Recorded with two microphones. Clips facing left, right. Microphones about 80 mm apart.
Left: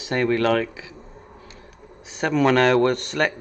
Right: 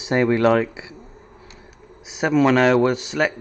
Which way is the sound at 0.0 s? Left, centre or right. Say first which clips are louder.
Right 3 dB; right.